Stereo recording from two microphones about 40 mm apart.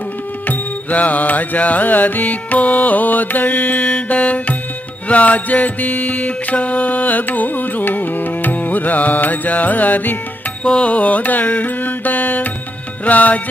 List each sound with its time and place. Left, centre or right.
0.5 s mantra: left
4.1 s music: left
5.0 s mantra: left
10.9 s music: left
13.0 s mantra: left